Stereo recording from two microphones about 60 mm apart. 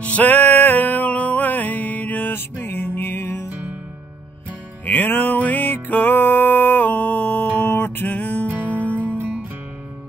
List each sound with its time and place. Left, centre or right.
0.0 s music: left
4.8 s music: left
8.5 s music: right